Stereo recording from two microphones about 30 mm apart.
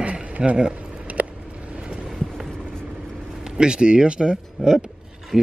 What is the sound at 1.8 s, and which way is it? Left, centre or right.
Boat, right.